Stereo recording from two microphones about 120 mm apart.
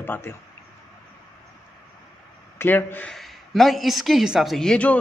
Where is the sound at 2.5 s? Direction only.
15° left (ahead or behind).